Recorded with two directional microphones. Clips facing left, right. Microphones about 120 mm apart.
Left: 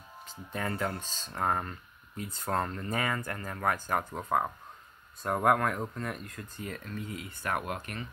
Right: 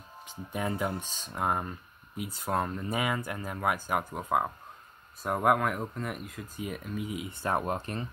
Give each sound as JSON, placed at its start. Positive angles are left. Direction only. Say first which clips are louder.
{"t": 0.5, "sound": "speech", "louder": "right 2 dB", "side_deg": -15}